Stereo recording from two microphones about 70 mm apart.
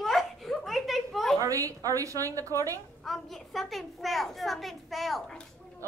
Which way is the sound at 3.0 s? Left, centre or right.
Centre.